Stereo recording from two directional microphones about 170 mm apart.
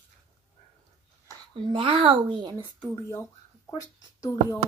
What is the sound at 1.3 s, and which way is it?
Speech, 30° right (ahead or behind).